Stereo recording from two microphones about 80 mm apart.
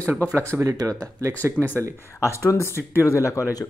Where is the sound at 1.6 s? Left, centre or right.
Centre.